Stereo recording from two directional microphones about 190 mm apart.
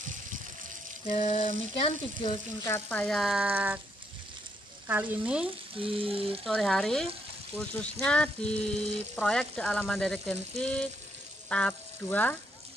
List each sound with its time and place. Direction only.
1.0 s frying: 40° left (ahead or behind)
2.6 s frying: 10° left (ahead or behind); by 3.8 s 10° right (ahead or behind)
4.8 s frying: 10° right (ahead or behind)
5.8 s frying: 30° right (ahead or behind)
6.4 s frying: centre (ahead or behind)